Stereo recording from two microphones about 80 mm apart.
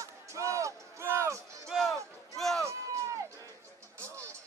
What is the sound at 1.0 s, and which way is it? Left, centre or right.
Music, right.